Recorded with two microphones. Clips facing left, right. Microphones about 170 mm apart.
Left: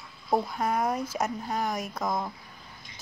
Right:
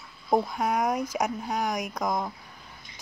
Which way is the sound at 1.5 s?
Centre (ahead or behind).